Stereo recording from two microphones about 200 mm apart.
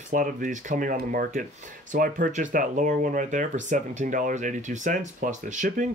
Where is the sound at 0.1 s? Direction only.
40° right (ahead or behind).